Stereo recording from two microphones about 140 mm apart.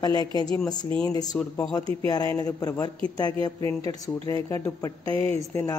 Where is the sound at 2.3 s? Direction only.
25° left (ahead or behind).